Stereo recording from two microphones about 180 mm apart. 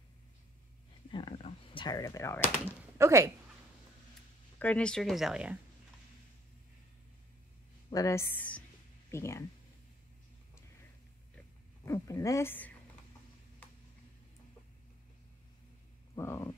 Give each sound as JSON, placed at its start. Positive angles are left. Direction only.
{"t": 1.3, "sound": "speech", "side_deg": 30}
{"t": 3.0, "sound": "speech", "side_deg": -15}
{"t": 4.6, "sound": "speech", "side_deg": 10}
{"t": 7.9, "sound": "a woman's voice", "side_deg": 15}
{"t": 11.8, "sound": "a woman's voice", "side_deg": 15}
{"t": 16.2, "sound": "a woman's voice", "side_deg": 15}